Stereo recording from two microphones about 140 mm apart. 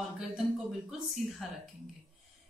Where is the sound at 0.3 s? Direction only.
Centre (ahead or behind).